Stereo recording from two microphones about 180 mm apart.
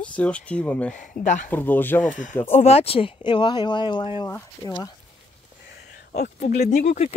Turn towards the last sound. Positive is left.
turn(degrees=40)  # may be behind; listen again after turning